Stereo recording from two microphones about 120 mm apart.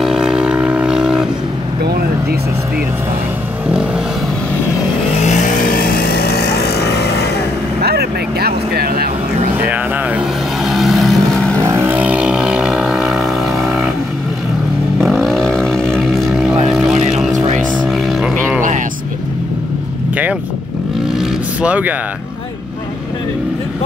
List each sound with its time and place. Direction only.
0.0 s vehicle: 5° right (ahead or behind)
3.6 s vehicle: 10° right (ahead or behind)
5.1 s vehicle: 75° left (ahead or behind)
9.7 s a sound: 15° right (ahead or behind)
10.6 s vehicle: centre (ahead or behind)
11.6 s vehicle: 20° right (ahead or behind); by 13.8 s centre (ahead or behind)
15.2 s vehicle: 5° left (ahead or behind)
16.7 s boat: 5° right (ahead or behind)
17.3 s a sound: 90° right
17.7 s a sound: centre (ahead or behind)
21.2 s vehicle: 10° right (ahead or behind)